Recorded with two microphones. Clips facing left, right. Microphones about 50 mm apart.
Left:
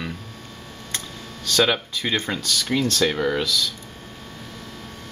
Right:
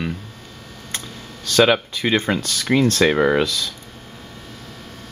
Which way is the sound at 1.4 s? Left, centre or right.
Right.